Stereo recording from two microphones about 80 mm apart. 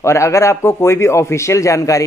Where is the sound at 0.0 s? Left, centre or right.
Left.